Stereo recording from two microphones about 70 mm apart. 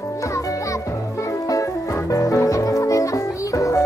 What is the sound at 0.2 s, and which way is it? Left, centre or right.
Music, left.